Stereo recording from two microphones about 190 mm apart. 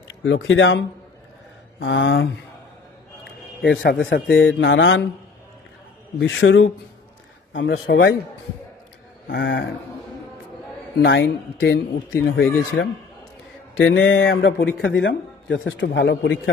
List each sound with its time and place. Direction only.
0.1 s speech: 90° left
1.8 s mantra: 85° left
3.9 s a man's voice: 75° left (ahead or behind)
4.5 s mantra: 85° left
6.1 s mantra: 80° left
7.8 s a man's voice: 55° left (ahead or behind)
9.3 s speech: 65° left (ahead or behind)
11.0 s a man's voice: 75° left (ahead or behind)
12.3 s speech: 60° left (ahead or behind)
13.7 s a man's voice: 90° left; by 16.3 s 70° left (ahead or behind)